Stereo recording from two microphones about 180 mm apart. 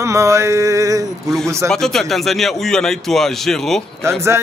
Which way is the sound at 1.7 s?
5° left (ahead or behind).